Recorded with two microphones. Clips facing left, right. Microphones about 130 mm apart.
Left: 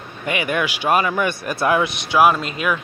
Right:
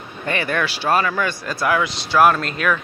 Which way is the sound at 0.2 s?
15° left (ahead or behind).